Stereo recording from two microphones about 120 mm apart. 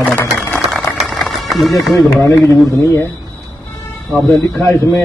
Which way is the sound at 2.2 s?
25° left (ahead or behind).